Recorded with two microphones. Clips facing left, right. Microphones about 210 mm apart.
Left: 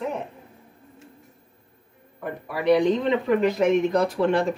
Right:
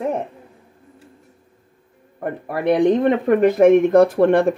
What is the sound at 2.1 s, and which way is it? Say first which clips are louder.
Speech: right 5 dB; 50° right (ahead or behind).